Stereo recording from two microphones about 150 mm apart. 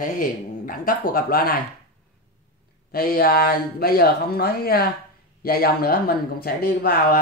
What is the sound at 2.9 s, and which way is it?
Speech, 85° left.